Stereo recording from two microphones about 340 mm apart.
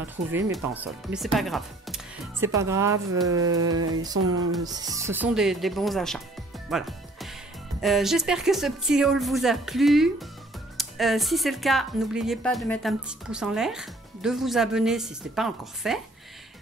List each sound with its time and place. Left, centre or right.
0.0 s speech: centre
6.7 s music: centre
7.8 s speech: centre